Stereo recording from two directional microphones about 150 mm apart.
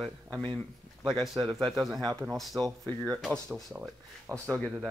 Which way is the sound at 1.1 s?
30° right (ahead or behind).